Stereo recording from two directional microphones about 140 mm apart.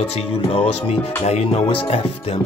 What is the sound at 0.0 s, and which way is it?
Speech, 45° left (ahead or behind).